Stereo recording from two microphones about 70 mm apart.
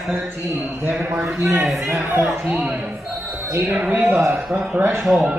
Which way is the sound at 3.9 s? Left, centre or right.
Right.